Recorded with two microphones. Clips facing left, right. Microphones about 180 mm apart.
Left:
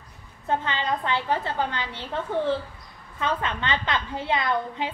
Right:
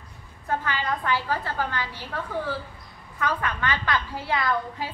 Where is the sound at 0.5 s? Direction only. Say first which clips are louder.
Left 2 dB; 25° left (ahead or behind).